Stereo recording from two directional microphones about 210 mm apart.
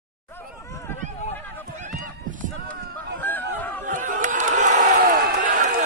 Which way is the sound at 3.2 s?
10° left (ahead or behind).